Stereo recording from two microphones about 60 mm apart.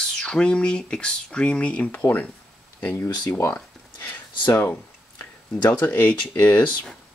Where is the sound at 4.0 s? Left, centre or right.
Left.